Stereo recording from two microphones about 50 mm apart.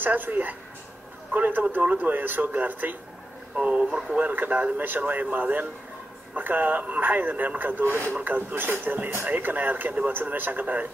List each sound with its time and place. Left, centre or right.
0.0 s a man's voice: right
3.5 s speech: right
4.3 s a man's voice: right